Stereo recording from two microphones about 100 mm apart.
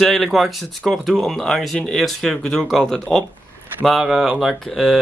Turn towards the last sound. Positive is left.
turn(degrees=5)  # may be behind; listen again after turning